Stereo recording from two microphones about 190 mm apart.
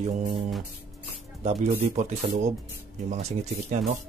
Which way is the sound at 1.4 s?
30° right (ahead or behind).